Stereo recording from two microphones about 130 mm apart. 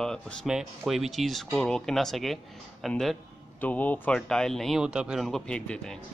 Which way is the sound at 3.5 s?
15° left (ahead or behind).